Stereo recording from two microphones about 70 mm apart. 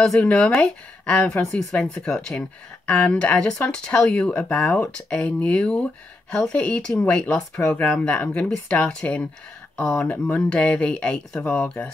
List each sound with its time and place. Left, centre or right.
0.0 s speech: centre